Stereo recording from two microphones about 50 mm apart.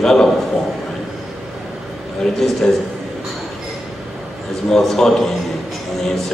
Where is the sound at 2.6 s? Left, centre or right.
Centre.